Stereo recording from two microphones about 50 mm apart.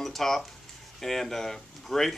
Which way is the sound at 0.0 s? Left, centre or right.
Centre.